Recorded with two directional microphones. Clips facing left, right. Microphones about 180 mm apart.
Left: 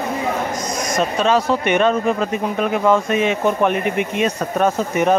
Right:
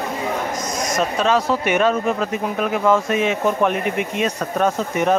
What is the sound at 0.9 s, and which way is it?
Speech, centre (ahead or behind).